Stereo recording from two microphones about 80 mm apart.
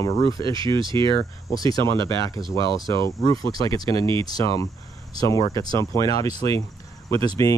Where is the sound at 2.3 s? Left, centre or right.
Right.